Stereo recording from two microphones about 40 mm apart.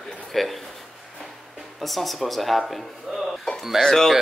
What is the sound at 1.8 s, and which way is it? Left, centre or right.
Speech, centre.